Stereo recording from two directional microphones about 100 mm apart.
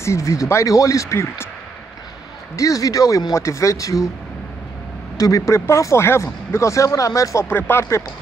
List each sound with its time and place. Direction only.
0.0 s speech: 30° left (ahead or behind)
2.5 s speech: 35° left (ahead or behind)
5.1 s speech: 35° left (ahead or behind)